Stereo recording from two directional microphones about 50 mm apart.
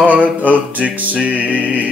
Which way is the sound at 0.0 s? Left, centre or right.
Right.